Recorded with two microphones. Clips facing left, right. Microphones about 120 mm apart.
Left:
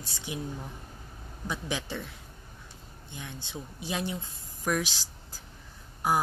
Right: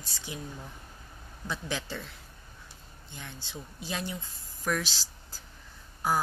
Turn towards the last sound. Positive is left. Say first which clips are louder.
# left 2 dB
turn(degrees=20)  # may be behind; listen again after turning